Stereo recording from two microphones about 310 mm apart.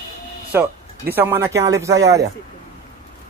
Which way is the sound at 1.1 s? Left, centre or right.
Centre.